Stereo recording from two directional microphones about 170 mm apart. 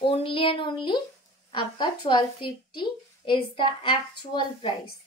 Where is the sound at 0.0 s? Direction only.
30° left (ahead or behind).